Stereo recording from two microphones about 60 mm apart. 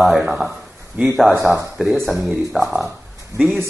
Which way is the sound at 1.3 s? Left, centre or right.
Right.